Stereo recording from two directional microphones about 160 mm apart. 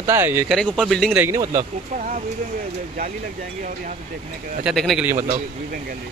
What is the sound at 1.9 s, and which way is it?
Speech, 55° right (ahead or behind).